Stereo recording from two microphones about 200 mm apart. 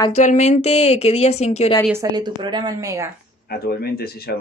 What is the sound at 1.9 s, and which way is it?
A woman's voice, 15° right (ahead or behind).